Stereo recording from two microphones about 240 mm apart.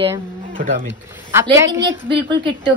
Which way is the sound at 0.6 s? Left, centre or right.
Right.